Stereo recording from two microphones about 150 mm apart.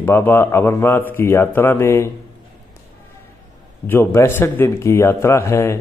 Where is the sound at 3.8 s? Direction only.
15° left (ahead or behind).